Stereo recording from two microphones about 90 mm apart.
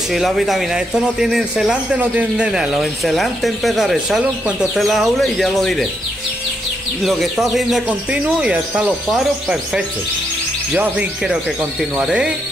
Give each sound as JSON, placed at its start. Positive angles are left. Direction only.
{"t": 0.1, "sound": "speech", "side_deg": 0}
{"t": 4.2, "sound": "speech", "side_deg": -15}
{"t": 4.7, "sound": "speech", "side_deg": 0}
{"t": 7.1, "sound": "speech", "side_deg": 0}
{"t": 8.1, "sound": "speech", "side_deg": -10}